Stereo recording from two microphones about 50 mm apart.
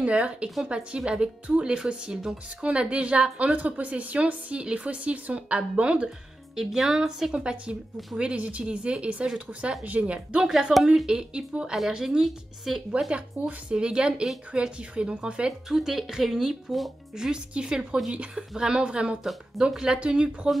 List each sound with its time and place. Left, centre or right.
0.0 s speech: right
6.5 s speech: centre
10.5 s speech: centre
11.1 s speech: centre
13.1 s speech: right
15.7 s speech: centre
17.1 s speech: centre